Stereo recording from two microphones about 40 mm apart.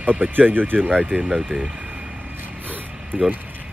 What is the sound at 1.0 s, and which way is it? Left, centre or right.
Speech, right.